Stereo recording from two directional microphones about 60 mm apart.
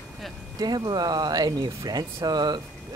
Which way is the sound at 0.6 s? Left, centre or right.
Right.